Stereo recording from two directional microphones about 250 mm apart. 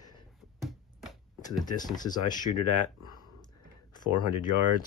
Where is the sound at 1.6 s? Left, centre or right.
Centre.